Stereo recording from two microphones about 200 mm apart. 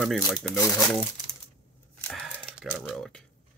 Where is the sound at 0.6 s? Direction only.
15° left (ahead or behind).